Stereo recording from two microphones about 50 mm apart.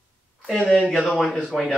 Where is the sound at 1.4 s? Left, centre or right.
Centre.